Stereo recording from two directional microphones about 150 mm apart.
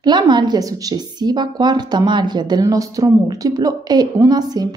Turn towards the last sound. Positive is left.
turn(degrees=-25)  # may be behind; listen again after turning